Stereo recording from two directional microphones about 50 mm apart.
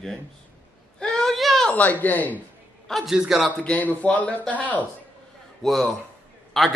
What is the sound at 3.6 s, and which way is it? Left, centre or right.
Speech, left.